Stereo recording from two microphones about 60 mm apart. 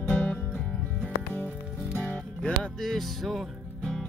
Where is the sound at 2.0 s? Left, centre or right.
Centre.